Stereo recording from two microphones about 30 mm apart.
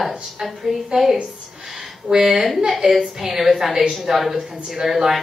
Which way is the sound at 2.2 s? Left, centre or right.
Centre.